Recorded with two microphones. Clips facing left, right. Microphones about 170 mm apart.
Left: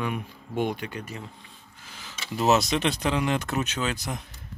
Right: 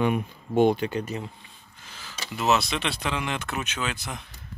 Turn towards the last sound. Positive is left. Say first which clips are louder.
# left 2 dB
turn(degrees=40)  # may be behind; listen again after turning